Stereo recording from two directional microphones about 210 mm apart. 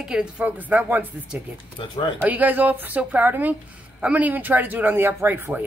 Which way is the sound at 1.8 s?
20° left (ahead or behind).